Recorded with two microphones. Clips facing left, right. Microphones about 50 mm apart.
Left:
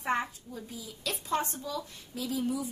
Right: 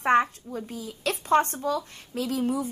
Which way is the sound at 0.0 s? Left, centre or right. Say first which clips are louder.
Right 9 dB; right.